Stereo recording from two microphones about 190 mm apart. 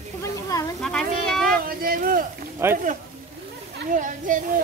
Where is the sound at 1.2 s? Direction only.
5° left (ahead or behind).